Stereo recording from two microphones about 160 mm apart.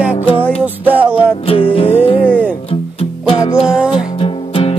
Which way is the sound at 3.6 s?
5° right (ahead or behind).